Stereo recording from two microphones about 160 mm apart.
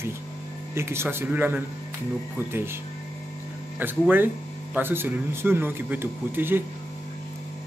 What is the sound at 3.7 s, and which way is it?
Speech, 10° right (ahead or behind).